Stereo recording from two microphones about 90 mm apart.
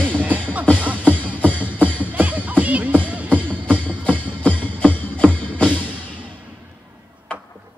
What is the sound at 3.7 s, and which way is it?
Music, 15° left (ahead or behind).